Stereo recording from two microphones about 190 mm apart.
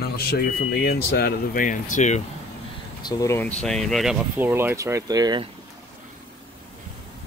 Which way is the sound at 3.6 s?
Centre (ahead or behind).